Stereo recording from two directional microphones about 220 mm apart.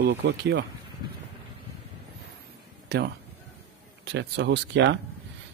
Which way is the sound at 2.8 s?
50° right (ahead or behind).